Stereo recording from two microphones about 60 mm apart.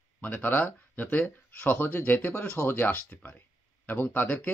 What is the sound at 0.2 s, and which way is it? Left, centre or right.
Speech, left.